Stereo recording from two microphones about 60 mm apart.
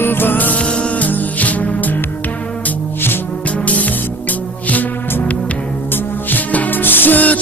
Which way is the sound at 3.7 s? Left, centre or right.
Left.